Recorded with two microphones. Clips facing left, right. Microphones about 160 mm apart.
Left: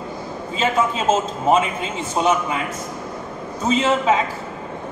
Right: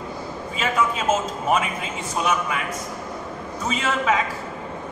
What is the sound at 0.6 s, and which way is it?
A man's voice, 25° left (ahead or behind).